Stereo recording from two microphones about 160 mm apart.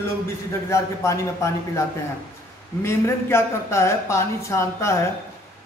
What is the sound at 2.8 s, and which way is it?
Speech, 15° left (ahead or behind).